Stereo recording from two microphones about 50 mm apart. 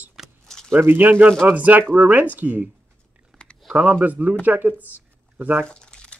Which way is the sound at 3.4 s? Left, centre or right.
Left.